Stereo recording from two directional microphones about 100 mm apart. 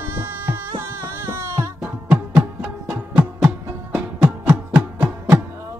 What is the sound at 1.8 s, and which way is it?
Music, 10° right (ahead or behind).